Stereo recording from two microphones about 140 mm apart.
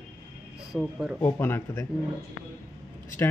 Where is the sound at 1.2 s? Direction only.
15° left (ahead or behind).